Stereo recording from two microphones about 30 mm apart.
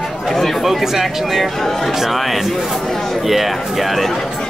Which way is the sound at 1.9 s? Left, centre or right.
Centre.